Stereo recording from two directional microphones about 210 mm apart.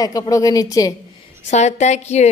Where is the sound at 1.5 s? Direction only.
35° left (ahead or behind).